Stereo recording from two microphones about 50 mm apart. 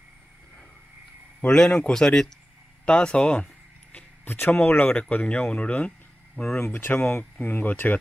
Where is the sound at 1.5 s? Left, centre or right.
Centre.